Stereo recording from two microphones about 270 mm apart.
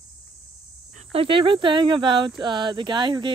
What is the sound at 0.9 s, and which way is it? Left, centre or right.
Speech, right.